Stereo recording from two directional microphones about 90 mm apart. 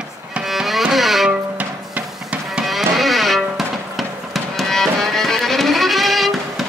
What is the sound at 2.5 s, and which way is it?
Music, centre (ahead or behind).